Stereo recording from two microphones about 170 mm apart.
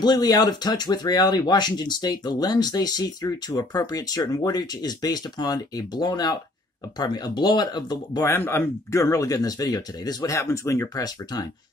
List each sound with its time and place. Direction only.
0.0 s speech: 25° left (ahead or behind)